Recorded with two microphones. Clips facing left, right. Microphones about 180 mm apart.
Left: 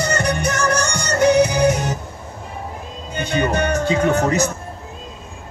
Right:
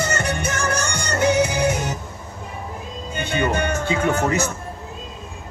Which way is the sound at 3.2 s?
40° left (ahead or behind).